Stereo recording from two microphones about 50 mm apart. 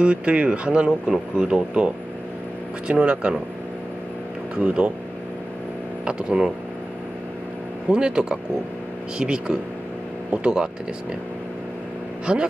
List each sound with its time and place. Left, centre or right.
0.0 s speech: right
2.9 s speech: right
4.6 s speech: right
6.0 s speech: centre
7.9 s speech: centre
12.3 s speech: centre